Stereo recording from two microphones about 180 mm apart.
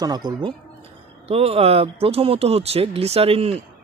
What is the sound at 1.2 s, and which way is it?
Speech, 35° right (ahead or behind).